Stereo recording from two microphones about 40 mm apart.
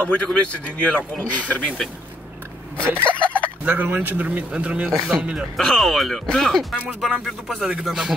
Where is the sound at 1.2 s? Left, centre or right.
Left.